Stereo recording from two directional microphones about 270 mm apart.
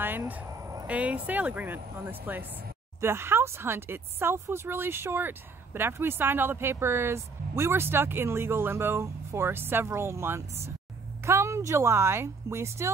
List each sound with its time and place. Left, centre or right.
0.0 s speech: centre